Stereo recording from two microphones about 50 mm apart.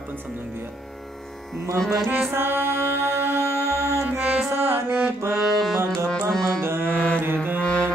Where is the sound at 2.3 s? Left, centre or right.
Right.